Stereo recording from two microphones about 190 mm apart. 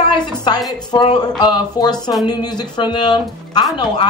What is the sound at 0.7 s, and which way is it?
Speech, 20° left (ahead or behind).